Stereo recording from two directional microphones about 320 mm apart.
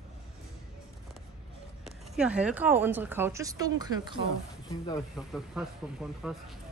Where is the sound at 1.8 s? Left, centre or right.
Centre.